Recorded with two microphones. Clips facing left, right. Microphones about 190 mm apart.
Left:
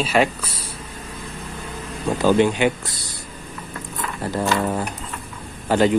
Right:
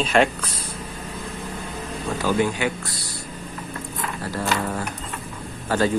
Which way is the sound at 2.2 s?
25° left (ahead or behind).